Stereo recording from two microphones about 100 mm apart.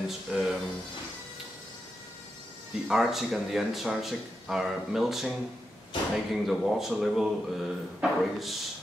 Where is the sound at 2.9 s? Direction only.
5° right (ahead or behind).